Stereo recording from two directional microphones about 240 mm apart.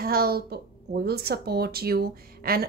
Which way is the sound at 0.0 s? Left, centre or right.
Right.